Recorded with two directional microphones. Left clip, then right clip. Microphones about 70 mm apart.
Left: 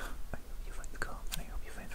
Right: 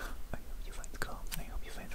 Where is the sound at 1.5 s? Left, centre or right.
Right.